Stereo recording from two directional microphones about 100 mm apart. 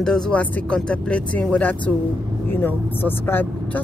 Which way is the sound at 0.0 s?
10° left (ahead or behind).